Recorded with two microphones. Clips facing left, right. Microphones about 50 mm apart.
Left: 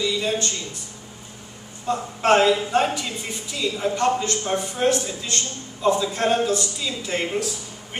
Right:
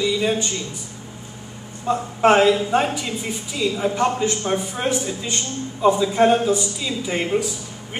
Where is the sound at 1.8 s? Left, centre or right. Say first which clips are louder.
Right 5 dB; centre.